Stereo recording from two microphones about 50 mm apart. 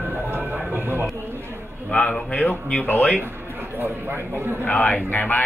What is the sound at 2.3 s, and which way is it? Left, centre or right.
Speech, left.